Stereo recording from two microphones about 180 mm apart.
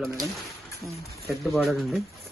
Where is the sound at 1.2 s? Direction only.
Centre (ahead or behind).